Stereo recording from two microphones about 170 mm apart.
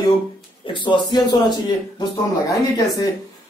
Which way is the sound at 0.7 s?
25° left (ahead or behind).